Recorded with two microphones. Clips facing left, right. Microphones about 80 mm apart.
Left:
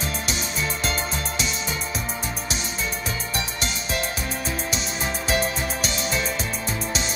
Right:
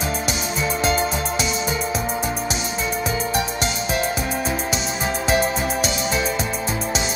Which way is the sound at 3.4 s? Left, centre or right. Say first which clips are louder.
Right 6 dB; centre.